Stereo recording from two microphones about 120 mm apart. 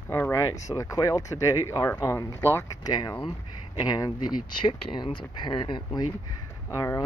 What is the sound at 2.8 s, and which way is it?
Speech, 35° left (ahead or behind).